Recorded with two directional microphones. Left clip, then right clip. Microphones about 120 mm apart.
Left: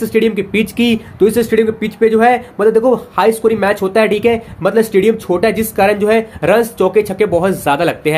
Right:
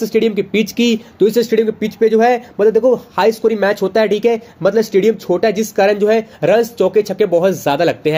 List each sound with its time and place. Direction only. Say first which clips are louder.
0.0 s speech: left 1 dB; 40° right (ahead or behind)